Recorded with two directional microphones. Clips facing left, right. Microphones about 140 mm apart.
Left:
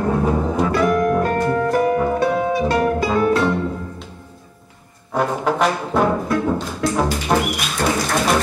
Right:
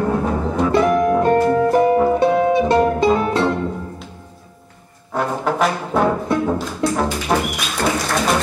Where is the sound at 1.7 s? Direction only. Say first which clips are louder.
Right 3 dB; 25° right (ahead or behind).